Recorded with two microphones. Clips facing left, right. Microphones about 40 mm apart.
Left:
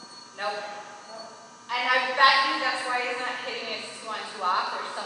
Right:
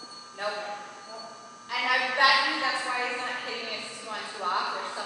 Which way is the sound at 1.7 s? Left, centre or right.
Centre.